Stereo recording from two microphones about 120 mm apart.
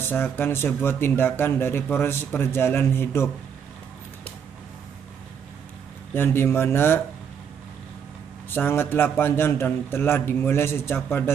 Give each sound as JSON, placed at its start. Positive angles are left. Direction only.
{"t": 0.0, "sound": "speech", "side_deg": 15}
{"t": 6.1, "sound": "speech", "side_deg": 20}
{"t": 8.5, "sound": "speech", "side_deg": 15}